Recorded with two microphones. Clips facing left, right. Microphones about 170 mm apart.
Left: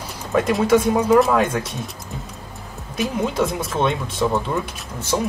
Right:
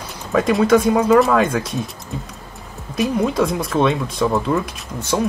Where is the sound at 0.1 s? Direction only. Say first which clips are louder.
Right 2 dB; centre (ahead or behind).